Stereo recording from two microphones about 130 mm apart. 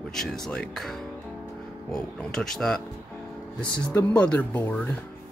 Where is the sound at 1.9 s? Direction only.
5° left (ahead or behind).